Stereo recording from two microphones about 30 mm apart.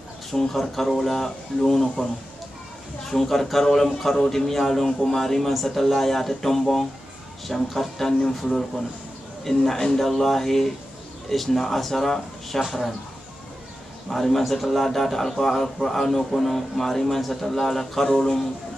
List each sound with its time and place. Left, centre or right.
0.6 s a man's voice: centre
3.1 s a man's voice: centre
14.0 s a man's voice: centre